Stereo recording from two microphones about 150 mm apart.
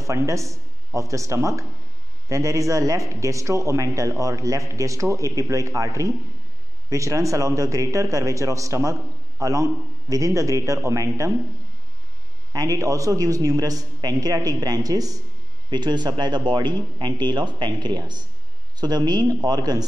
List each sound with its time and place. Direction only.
0.0 s a man's voice: 20° right (ahead or behind)
12.5 s a man's voice: 25° right (ahead or behind)